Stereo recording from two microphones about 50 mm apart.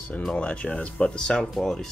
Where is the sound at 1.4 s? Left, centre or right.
Centre.